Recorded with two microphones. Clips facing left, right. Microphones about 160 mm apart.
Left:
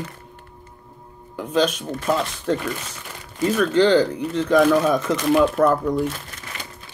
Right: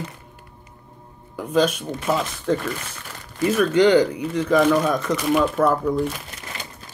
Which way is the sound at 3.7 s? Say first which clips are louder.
Right 1 dB; 15° right (ahead or behind).